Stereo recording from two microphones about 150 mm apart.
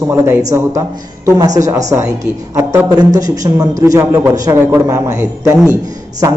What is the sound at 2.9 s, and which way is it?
A man's voice, 25° right (ahead or behind).